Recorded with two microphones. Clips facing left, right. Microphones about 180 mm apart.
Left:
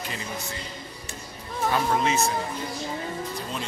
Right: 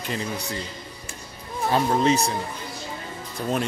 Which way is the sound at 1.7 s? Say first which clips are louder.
Right 5 dB; 35° right (ahead or behind).